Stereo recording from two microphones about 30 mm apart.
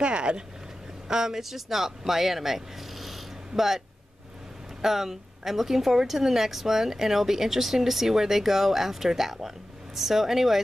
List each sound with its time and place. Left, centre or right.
0.0 s speech: right
1.0 s speech: centre
1.3 s speech: centre
4.8 s a woman's voice: centre